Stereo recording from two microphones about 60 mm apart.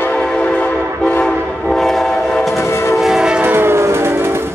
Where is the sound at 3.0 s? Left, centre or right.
Centre.